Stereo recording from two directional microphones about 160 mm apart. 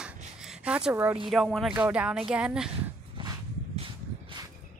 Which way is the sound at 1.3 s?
Centre (ahead or behind).